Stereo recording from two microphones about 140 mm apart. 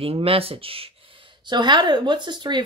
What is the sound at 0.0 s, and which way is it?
Speech, 45° right (ahead or behind).